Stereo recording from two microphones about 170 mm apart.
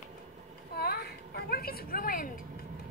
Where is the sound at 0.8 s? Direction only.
65° left (ahead or behind).